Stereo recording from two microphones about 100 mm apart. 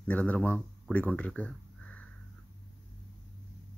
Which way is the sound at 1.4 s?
10° left (ahead or behind).